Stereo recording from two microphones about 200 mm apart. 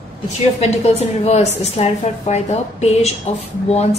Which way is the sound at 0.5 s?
35° left (ahead or behind).